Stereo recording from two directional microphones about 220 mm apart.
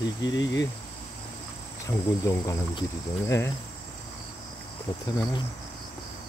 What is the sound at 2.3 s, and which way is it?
Speech, 15° left (ahead or behind).